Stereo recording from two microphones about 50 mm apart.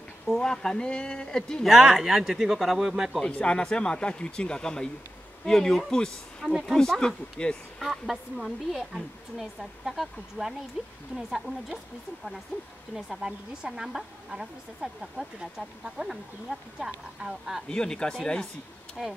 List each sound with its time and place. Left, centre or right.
0.4 s speech: centre
1.6 s speech: centre
3.3 s speech: left
5.9 s speech: centre
7.8 s speech: centre
12.9 s speech: centre
17.6 s speech: centre
19.0 s speech: centre